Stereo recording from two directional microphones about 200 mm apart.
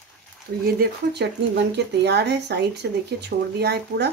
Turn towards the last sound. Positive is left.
turn(degrees=-55)  # may be behind; listen again after turning